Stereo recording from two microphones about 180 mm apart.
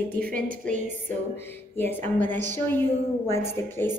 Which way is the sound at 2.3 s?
45° right (ahead or behind).